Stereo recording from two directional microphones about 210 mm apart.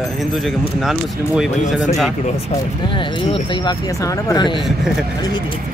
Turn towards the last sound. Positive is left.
turn(degrees=0)  # may be behind; listen again after turning